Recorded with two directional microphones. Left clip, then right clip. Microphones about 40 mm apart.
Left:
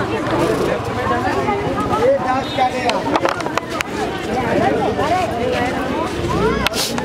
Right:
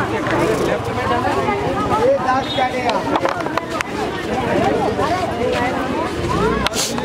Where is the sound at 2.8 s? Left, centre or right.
Left.